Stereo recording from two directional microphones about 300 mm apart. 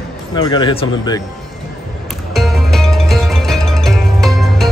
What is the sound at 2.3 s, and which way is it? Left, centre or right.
Music, centre.